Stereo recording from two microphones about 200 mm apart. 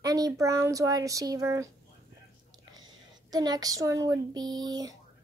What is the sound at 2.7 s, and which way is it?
Speech, 20° right (ahead or behind).